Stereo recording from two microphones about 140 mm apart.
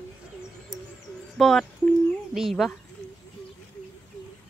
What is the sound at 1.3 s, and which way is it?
Speech, centre (ahead or behind).